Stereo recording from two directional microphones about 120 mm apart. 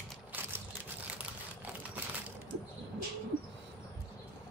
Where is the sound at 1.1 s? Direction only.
15° right (ahead or behind).